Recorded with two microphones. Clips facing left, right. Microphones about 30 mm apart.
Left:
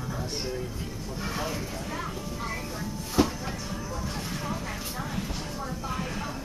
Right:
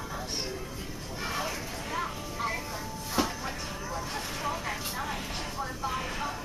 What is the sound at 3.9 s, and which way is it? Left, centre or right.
Vehicle, centre.